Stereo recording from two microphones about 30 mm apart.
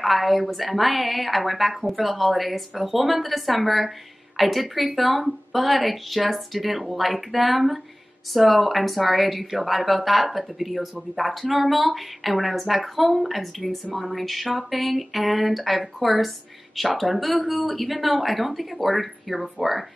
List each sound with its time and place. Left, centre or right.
0.0 s a woman's voice: centre